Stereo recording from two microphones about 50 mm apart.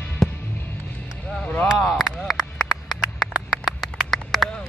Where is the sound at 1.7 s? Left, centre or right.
Centre.